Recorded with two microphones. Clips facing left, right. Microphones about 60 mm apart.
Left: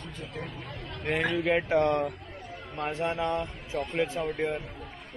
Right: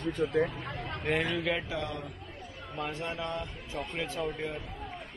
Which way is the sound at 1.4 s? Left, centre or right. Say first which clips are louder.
Left 6 dB; left.